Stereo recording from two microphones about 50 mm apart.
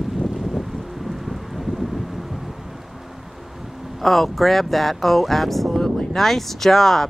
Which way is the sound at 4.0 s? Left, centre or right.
Centre.